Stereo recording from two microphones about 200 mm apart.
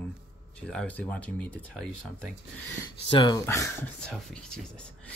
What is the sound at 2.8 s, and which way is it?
Speech, 20° left (ahead or behind).